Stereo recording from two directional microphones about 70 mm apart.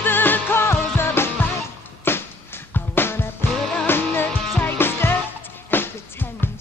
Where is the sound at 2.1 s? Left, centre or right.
Left.